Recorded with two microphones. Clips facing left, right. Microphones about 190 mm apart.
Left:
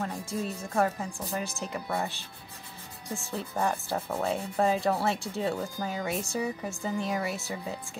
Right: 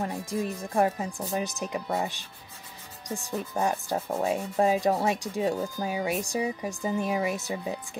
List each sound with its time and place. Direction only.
0.0 s rub: 15° right (ahead or behind)